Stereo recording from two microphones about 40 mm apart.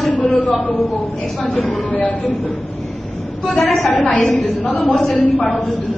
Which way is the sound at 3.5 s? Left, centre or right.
Left.